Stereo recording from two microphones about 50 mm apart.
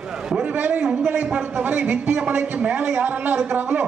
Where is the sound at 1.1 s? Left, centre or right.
Right.